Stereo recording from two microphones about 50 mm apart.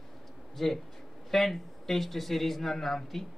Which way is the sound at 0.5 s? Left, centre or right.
Centre.